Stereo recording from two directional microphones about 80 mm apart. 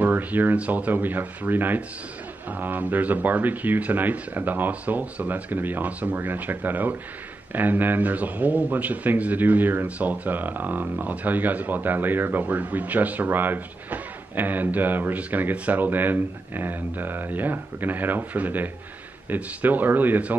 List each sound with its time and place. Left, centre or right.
0.0 s speech: right